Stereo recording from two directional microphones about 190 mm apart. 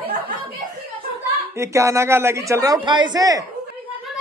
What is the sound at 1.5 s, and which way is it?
A man's voice, 15° right (ahead or behind).